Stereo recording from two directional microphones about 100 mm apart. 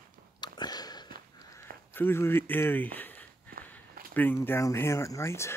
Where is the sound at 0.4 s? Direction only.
45° left (ahead or behind).